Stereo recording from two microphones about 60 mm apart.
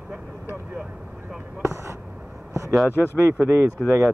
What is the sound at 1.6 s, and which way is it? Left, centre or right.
Speech, right.